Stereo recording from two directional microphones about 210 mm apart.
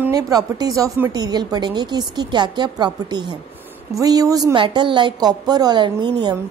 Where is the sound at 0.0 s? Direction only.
15° right (ahead or behind).